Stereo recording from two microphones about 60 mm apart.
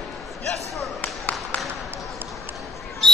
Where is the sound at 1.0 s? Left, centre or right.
Left.